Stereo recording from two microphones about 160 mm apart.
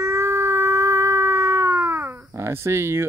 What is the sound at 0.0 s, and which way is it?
Cat, 15° right (ahead or behind).